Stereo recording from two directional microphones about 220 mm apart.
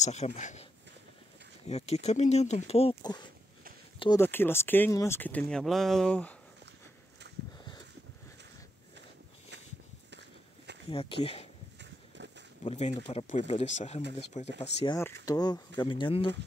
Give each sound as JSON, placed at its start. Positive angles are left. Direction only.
{"t": 0.0, "sound": "speech", "side_deg": 30}
{"t": 1.7, "sound": "speech", "side_deg": 30}
{"t": 10.9, "sound": "speech", "side_deg": 25}
{"t": 11.8, "sound": "a sound", "side_deg": -55}
{"t": 12.6, "sound": "speech", "side_deg": 25}
{"t": 15.0, "sound": "speech", "side_deg": 15}